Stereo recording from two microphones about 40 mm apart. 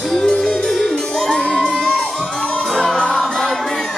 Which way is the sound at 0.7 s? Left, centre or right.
Centre.